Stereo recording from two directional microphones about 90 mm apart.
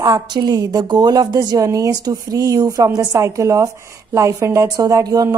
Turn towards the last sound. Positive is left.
turn(degrees=-40)  # may be behind; listen again after turning